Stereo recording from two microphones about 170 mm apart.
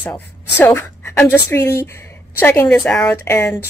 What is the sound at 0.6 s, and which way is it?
A woman's voice, 15° left (ahead or behind).